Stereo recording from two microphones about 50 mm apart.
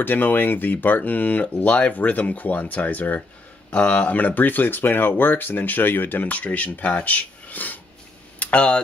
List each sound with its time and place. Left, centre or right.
0.0 s speech: left
6.2 s speech: left
8.4 s a sound: left